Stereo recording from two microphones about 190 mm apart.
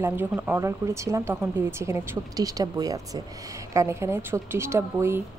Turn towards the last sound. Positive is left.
turn(degrees=-15)  # may be behind; listen again after turning